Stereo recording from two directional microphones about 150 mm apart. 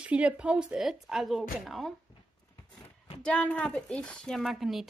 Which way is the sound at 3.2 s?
5° left (ahead or behind).